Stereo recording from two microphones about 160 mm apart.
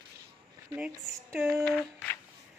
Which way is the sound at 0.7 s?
10° right (ahead or behind).